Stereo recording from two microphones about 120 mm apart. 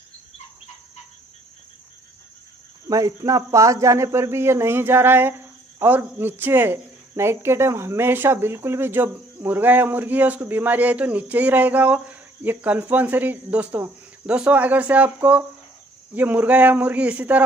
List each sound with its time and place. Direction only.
2.9 s speech: 30° right (ahead or behind); by 17.4 s 10° right (ahead or behind)